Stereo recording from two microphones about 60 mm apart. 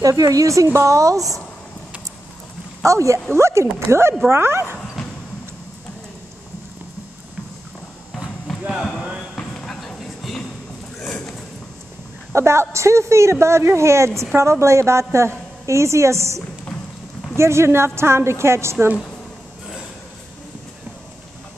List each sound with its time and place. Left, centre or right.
0.0 s speech: right
2.8 s a woman's voice: right
8.5 s a sound: centre
12.3 s a woman's voice: right
17.4 s a woman's voice: right